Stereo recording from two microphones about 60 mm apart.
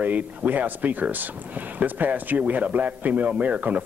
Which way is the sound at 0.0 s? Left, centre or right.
Right.